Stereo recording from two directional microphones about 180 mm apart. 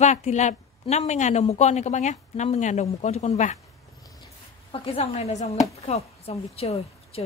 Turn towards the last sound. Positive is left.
turn(degrees=35)  # may be behind; listen again after turning